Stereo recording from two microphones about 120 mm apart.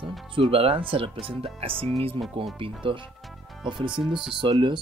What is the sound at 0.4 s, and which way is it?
Speech, 50° right (ahead or behind).